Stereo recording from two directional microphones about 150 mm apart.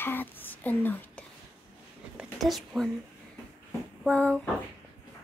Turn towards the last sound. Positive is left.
turn(degrees=5)  # may be behind; listen again after turning